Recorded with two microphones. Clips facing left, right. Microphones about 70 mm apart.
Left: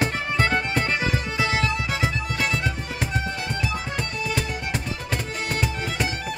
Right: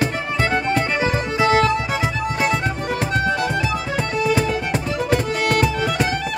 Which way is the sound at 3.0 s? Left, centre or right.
Right.